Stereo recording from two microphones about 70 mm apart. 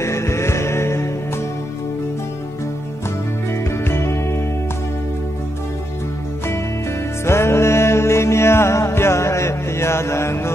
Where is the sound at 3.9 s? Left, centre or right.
Left.